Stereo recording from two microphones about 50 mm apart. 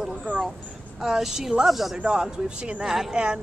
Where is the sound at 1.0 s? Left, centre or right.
Centre.